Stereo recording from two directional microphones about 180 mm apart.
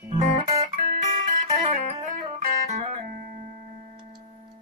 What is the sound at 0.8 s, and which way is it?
Music, 45° right (ahead or behind).